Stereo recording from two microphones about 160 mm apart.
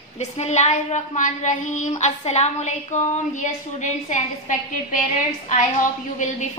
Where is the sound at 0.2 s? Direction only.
45° left (ahead or behind).